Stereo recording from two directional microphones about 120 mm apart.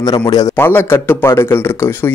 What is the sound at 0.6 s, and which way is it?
Speech, 20° left (ahead or behind).